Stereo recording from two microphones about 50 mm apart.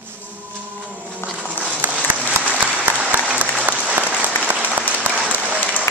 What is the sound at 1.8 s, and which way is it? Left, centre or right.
Applause, right.